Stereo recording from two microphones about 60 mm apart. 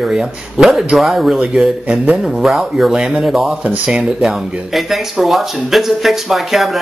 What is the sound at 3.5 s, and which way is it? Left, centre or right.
Speech, right.